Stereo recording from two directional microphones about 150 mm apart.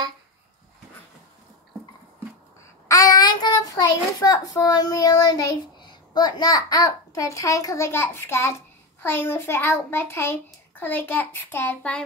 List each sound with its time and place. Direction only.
2.9 s a child's voice: 25° left (ahead or behind); by 12.0 s 10° left (ahead or behind)